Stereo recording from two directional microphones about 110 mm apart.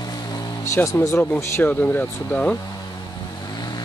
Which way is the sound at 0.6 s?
25° left (ahead or behind).